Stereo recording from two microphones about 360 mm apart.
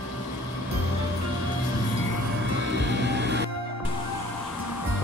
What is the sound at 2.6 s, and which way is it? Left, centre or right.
Music, right.